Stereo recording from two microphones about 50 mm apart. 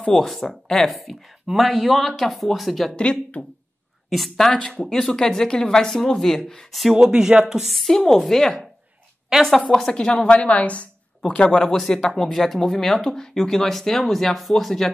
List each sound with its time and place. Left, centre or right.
0.0 s speech: centre
3.0 s speech: left
4.1 s speech: centre
4.5 s speech: centre
7.0 s speech: centre
7.7 s speech: centre
9.7 s speech: centre
10.2 s speech: left
12.1 s speech: centre